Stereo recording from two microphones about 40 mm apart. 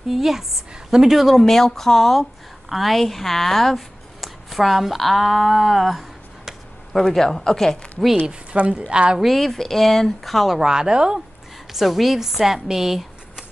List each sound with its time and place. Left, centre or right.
0.1 s a woman's voice: centre
1.4 s speech: centre
7.1 s speech: centre
8.3 s a woman's voice: right
9.2 s speech: centre
10.6 s a woman's voice: centre
11.7 s speech: centre